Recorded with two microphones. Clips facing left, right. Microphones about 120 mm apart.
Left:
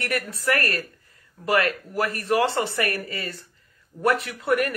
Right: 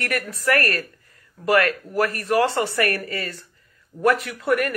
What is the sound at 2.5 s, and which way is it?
Speech, 50° right (ahead or behind).